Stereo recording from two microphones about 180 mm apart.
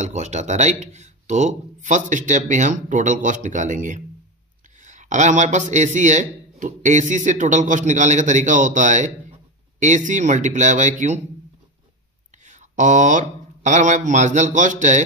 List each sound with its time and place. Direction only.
0.0 s a man's voice: 40° right (ahead or behind)
12.4 s speech: 45° right (ahead or behind)